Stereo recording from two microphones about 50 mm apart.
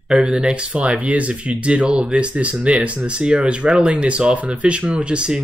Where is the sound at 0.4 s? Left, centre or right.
Centre.